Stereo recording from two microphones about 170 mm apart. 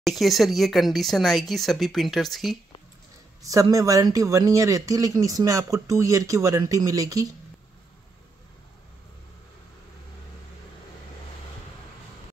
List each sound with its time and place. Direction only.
0.0 s speech: centre (ahead or behind)
3.4 s speech: 20° right (ahead or behind)